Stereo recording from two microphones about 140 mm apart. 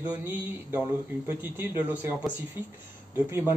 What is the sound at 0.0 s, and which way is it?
Speech, 10° right (ahead or behind).